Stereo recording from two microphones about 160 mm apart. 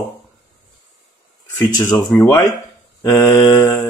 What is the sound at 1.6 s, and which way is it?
Mantra, 20° left (ahead or behind).